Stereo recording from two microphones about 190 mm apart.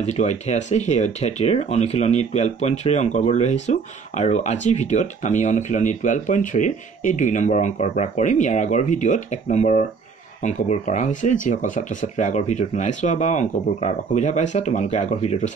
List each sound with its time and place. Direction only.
0.0 s speech: 35° left (ahead or behind)